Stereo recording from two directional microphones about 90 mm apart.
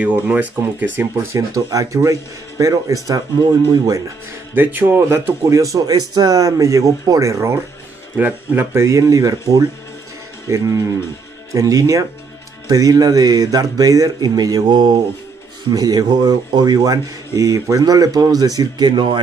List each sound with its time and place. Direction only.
0.0 s speech: 15° right (ahead or behind)
1.2 s speech: 35° right (ahead or behind)
4.6 s speech: 20° right (ahead or behind)
5.6 s speech: 40° right (ahead or behind)
8.2 s speech: 15° right (ahead or behind)
8.7 s speech: 35° right (ahead or behind); by 19.2 s 60° right (ahead or behind)